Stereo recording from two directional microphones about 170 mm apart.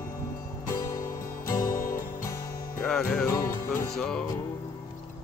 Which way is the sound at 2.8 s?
5° left (ahead or behind).